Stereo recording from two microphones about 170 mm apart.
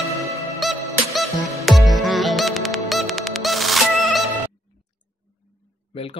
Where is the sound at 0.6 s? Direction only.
Centre (ahead or behind).